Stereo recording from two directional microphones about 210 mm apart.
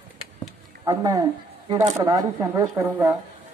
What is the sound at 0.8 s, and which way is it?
Speech, 20° right (ahead or behind).